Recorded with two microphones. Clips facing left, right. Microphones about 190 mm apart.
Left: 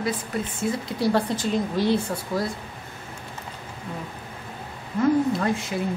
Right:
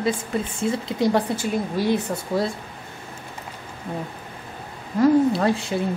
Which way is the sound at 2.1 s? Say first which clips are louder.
Right 3 dB; 25° right (ahead or behind).